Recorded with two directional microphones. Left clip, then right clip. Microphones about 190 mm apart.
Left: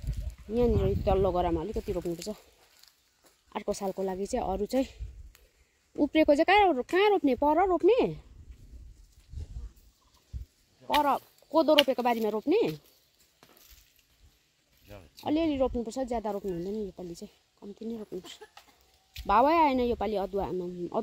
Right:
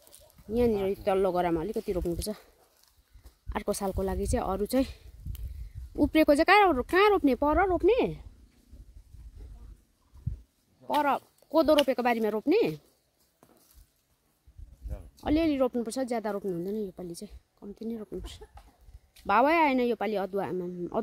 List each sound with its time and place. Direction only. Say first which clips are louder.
0.6 s speech: right 1 dB; 5° left (ahead or behind); by 2.4 s 15° right (ahead or behind)
3.4 s speech: right 1 dB; 15° right (ahead or behind)
5.9 s speech: right 1 dB; 10° right (ahead or behind); by 8.2 s 10° left (ahead or behind)
10.9 s speech: left 1 dB; centre (ahead or behind)
15.1 s speech: right 1 dB; 5° right (ahead or behind)